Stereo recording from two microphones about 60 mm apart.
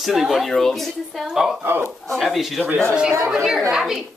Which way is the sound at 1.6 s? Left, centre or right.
Right.